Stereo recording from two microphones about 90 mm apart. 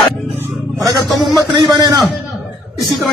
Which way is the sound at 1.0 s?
Centre (ahead or behind).